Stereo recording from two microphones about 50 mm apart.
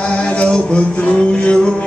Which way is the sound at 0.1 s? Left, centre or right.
Left.